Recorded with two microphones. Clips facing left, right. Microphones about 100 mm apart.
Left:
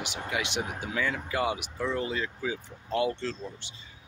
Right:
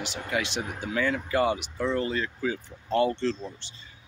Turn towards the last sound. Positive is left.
turn(degrees=10)  # may be behind; listen again after turning